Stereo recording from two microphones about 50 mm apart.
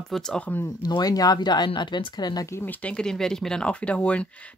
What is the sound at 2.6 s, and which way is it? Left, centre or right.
Speech, left.